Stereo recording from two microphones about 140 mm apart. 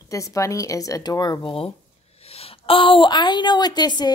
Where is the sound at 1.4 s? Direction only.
40° left (ahead or behind).